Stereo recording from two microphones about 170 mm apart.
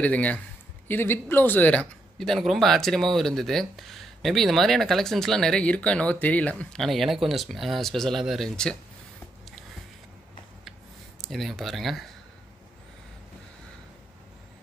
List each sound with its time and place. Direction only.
0.0 s a man's voice: 10° left (ahead or behind)
11.1 s speech: centre (ahead or behind)